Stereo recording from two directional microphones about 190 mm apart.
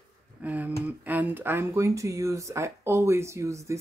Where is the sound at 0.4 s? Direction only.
10° right (ahead or behind).